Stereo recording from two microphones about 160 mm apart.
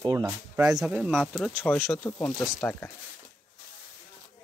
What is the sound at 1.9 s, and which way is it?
Speech, 10° left (ahead or behind).